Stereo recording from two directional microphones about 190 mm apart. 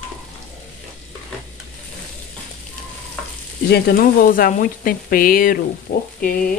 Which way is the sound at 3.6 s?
60° left (ahead or behind).